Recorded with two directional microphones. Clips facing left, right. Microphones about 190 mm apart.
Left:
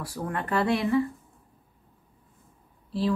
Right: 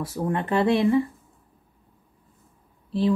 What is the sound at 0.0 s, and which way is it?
Speech, 20° right (ahead or behind).